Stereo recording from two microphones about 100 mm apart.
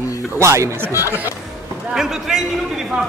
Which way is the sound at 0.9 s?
30° left (ahead or behind).